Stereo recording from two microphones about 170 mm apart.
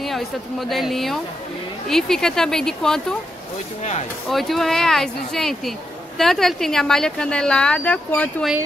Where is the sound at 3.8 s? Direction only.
40° left (ahead or behind).